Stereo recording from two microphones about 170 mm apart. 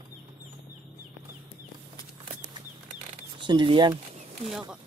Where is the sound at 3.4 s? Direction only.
30° right (ahead or behind).